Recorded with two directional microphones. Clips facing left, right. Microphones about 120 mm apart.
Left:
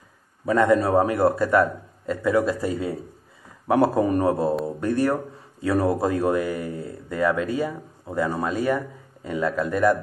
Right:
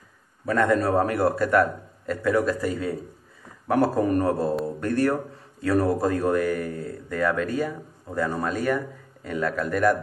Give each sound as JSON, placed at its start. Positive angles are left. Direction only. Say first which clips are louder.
{"t": 0.5, "sound": "a man's voice", "louder": "left 3 dB", "side_deg": 5}
{"t": 1.1, "sound": "speech", "louder": "left 2 dB", "side_deg": 5}
{"t": 4.0, "sound": "speech", "louder": "left 1 dB", "side_deg": 15}